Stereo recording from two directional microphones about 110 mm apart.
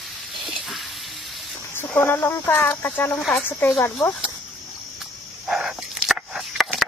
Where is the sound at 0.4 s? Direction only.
Centre (ahead or behind).